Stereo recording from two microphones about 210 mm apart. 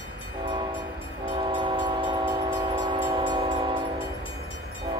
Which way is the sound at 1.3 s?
25° right (ahead or behind).